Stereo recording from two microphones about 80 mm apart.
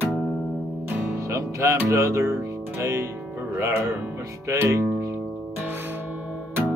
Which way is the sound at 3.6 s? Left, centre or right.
Right.